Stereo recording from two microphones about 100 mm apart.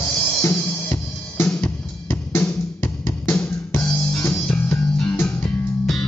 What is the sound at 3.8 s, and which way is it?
Music, 15° left (ahead or behind).